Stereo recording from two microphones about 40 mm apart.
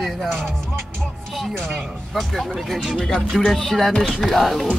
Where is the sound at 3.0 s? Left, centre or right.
Centre.